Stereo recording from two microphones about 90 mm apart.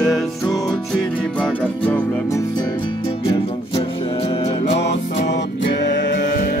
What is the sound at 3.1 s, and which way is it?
Music, 80° left.